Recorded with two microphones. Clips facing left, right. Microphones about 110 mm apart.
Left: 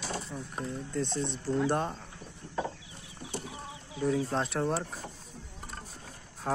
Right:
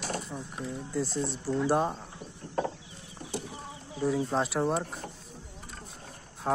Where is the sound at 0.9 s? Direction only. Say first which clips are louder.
Right 2 dB; 5° right (ahead or behind).